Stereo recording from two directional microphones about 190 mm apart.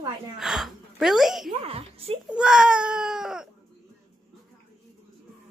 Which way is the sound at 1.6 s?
30° right (ahead or behind).